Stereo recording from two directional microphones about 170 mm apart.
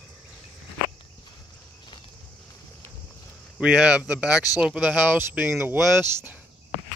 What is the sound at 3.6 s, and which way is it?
Speech, 5° right (ahead or behind).